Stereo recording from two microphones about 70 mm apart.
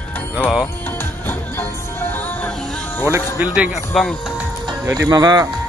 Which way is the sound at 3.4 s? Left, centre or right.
Right.